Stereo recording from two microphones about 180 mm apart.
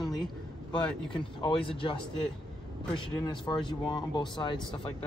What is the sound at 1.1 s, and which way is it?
Speech, 30° left (ahead or behind).